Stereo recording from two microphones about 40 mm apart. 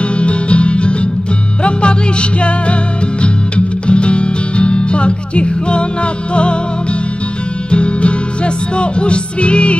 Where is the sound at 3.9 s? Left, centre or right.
Left.